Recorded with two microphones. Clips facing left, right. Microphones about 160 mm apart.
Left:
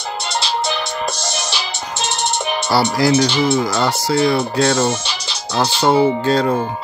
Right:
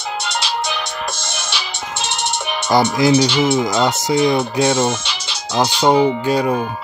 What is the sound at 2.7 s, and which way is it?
Speech, 15° right (ahead or behind).